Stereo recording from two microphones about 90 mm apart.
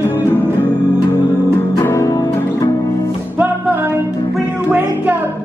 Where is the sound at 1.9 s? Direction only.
35° left (ahead or behind).